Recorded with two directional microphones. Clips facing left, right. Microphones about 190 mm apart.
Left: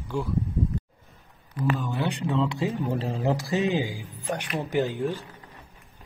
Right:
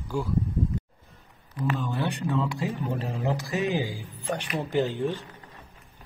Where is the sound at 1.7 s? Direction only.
10° left (ahead or behind).